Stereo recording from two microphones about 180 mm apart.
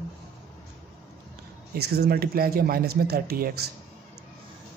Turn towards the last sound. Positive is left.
turn(degrees=-60)  # may be behind; listen again after turning